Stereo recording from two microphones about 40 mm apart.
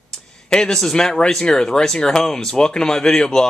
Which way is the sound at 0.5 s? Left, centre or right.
Centre.